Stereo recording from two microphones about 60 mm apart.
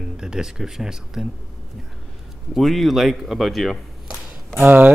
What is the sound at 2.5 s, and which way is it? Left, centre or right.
Speech, centre.